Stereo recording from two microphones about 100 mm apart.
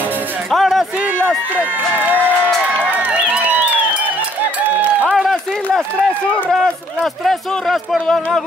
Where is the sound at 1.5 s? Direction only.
15° right (ahead or behind).